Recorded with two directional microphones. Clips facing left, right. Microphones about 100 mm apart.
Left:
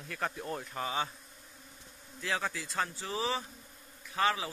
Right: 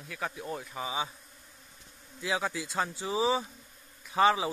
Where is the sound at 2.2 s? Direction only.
15° right (ahead or behind).